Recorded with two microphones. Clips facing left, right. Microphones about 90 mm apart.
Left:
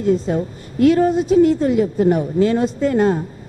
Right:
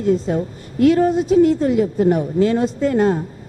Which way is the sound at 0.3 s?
15° left (ahead or behind).